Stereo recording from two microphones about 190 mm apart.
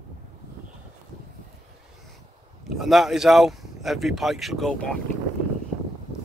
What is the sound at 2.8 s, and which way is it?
Speech, centre (ahead or behind).